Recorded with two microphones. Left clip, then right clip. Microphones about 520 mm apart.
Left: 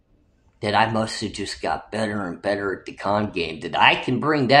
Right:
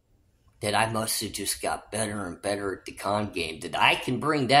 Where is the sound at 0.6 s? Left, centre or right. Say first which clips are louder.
Left 6 dB; right.